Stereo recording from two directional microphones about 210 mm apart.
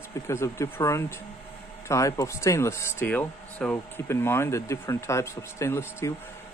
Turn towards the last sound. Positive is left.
turn(degrees=10)  # may be behind; listen again after turning